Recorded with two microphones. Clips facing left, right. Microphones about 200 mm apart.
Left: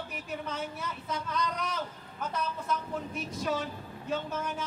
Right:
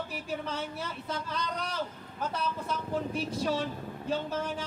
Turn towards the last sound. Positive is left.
turn(degrees=-30)  # may be behind; listen again after turning